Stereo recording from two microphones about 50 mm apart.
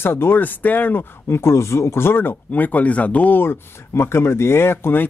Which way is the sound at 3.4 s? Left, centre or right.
Left.